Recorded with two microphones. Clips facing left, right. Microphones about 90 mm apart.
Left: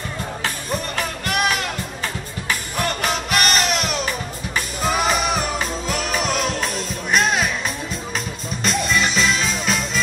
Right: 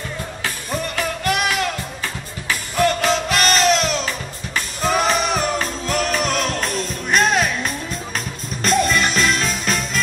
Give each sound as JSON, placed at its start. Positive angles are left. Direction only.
{"t": 0.9, "sound": "music", "side_deg": 20}
{"t": 3.0, "sound": "music", "side_deg": 20}
{"t": 4.8, "sound": "music", "side_deg": 5}
{"t": 8.6, "sound": "music", "side_deg": 0}